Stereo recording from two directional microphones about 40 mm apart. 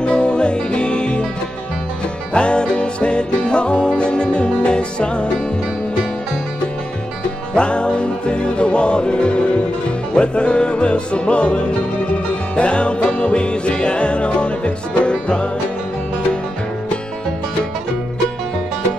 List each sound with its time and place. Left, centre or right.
0.0 s music: left
2.3 s music: left
7.5 s music: left